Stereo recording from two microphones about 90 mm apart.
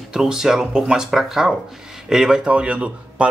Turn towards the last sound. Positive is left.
turn(degrees=-15)  # may be behind; listen again after turning